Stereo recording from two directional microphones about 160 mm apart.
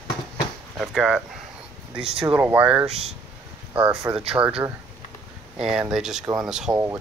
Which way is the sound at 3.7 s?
5° right (ahead or behind).